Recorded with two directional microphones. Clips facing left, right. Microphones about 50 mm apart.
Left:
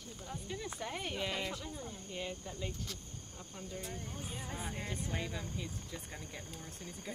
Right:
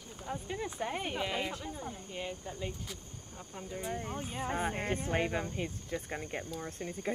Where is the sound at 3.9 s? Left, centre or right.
Right.